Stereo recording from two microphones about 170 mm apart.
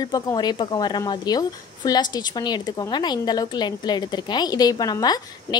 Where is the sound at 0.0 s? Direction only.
25° left (ahead or behind).